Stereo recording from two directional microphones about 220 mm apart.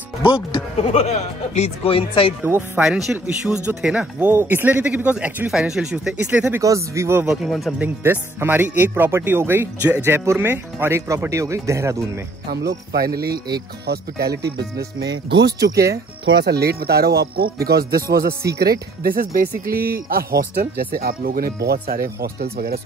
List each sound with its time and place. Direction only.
0.2 s speech: 20° left (ahead or behind)
2.4 s speech: 10° right (ahead or behind)
7.4 s speech: centre (ahead or behind)
12.4 s speech: 45° right (ahead or behind)